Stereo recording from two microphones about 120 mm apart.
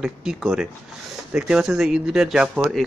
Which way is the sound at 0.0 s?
5° right (ahead or behind).